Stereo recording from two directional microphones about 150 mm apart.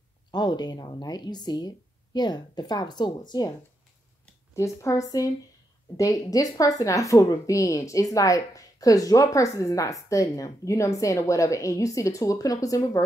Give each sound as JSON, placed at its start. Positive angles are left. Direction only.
{"t": 0.3, "sound": "a woman's voice", "side_deg": 30}
{"t": 4.6, "sound": "a woman's voice", "side_deg": 20}